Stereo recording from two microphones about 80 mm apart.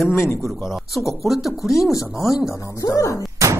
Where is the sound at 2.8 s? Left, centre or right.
Left.